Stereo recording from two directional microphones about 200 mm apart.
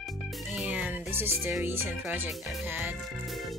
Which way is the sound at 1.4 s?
10° right (ahead or behind).